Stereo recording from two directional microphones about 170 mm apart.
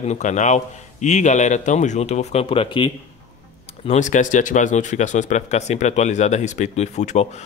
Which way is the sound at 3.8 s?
45° left (ahead or behind).